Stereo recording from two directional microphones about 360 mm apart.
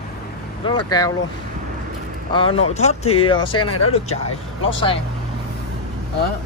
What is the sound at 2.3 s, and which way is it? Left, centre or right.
Speech, centre.